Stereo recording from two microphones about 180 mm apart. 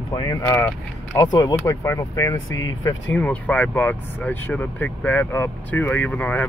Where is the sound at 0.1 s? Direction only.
20° left (ahead or behind).